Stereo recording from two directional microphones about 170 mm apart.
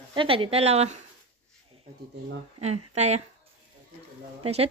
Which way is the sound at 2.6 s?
40° right (ahead or behind).